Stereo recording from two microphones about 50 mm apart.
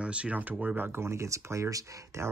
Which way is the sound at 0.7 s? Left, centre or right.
Right.